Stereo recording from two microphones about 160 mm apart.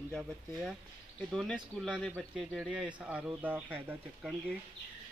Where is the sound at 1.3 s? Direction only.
5° right (ahead or behind).